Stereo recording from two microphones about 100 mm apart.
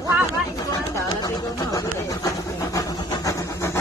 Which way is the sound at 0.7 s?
40° left (ahead or behind).